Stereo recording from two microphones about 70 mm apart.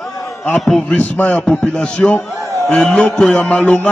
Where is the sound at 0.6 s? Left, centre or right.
Centre.